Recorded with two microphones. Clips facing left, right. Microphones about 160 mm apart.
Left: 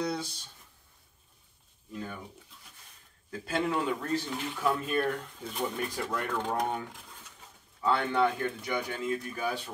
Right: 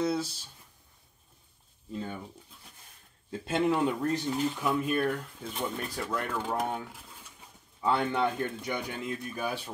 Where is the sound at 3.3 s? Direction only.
25° right (ahead or behind).